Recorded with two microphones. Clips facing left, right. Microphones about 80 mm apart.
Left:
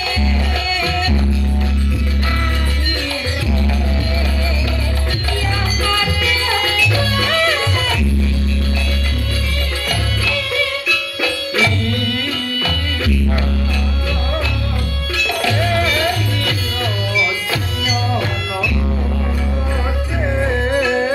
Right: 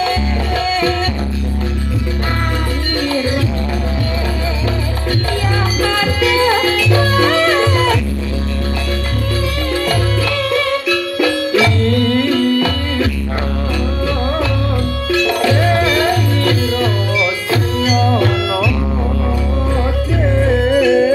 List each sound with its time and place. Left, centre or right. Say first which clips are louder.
0.0 s music: right 4 dB; right
5.8 s music: right 4 dB; right
9.8 s music: right 5 dB; right